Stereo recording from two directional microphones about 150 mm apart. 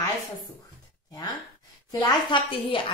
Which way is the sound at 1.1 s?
25° left (ahead or behind).